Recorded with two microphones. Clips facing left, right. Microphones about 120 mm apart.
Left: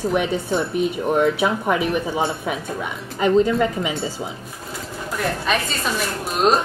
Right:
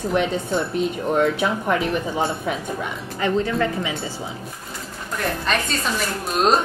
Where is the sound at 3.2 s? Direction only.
15° left (ahead or behind).